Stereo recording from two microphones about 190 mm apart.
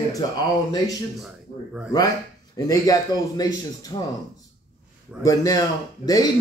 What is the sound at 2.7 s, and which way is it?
A man's voice, 20° left (ahead or behind).